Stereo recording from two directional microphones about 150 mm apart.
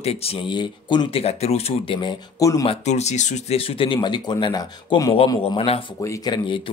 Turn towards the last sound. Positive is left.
turn(degrees=25)  # may be behind; listen again after turning